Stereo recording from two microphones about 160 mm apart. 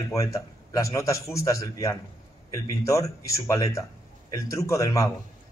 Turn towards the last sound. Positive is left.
turn(degrees=20)  # may be behind; listen again after turning